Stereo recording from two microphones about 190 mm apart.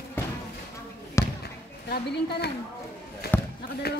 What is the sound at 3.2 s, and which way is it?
Basketball bounce, 55° left (ahead or behind).